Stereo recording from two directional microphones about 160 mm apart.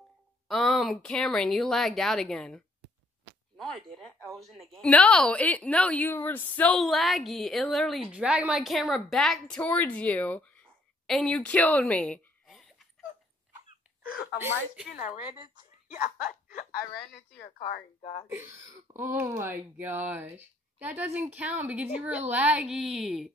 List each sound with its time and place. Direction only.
0.5 s a woman's voice: centre (ahead or behind)
15.9 s a sound: 55° left (ahead or behind)
17.6 s speech: 45° left (ahead or behind)
18.3 s speech: 15° right (ahead or behind)